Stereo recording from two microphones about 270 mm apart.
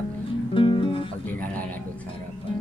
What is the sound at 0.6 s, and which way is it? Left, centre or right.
Music, centre.